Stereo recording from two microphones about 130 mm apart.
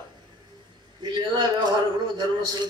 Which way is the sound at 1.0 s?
30° right (ahead or behind).